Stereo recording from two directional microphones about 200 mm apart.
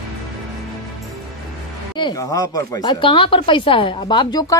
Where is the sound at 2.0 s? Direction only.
20° left (ahead or behind).